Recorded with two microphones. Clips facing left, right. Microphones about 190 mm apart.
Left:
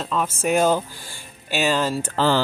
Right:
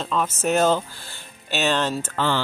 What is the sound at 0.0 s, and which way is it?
Speech, 5° left (ahead or behind).